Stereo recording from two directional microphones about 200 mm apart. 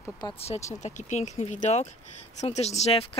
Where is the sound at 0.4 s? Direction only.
30° left (ahead or behind).